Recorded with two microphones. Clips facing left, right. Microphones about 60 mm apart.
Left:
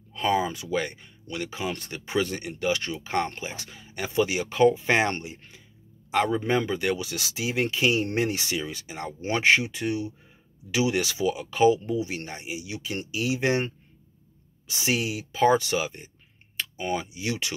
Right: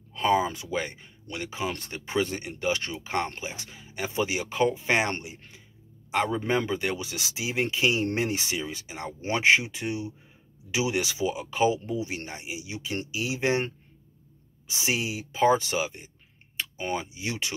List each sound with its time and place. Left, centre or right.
0.3 s speech: right
14.7 s speech: centre